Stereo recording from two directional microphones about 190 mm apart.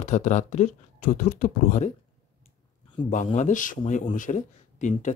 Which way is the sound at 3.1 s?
40° left (ahead or behind).